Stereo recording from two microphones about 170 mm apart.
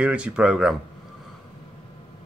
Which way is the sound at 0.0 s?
5° right (ahead or behind).